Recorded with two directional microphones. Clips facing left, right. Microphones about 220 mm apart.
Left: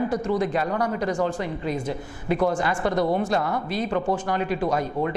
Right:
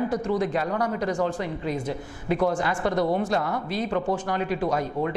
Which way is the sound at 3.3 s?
30° left (ahead or behind).